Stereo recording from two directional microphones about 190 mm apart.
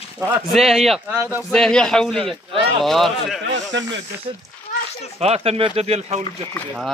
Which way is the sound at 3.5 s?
70° right (ahead or behind).